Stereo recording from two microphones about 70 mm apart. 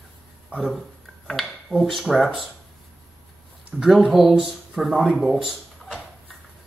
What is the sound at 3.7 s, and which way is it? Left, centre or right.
Speech, centre.